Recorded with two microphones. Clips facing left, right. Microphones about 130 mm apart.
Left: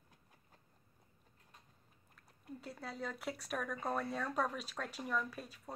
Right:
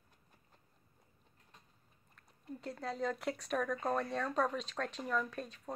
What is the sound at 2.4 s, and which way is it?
Speech, 5° left (ahead or behind).